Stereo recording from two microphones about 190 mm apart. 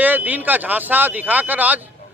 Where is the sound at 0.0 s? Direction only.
10° right (ahead or behind).